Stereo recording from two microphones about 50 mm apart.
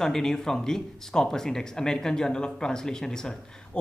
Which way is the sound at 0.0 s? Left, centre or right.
Centre.